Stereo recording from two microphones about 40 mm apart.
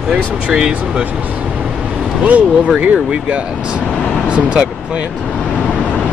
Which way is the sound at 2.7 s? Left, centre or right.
Right.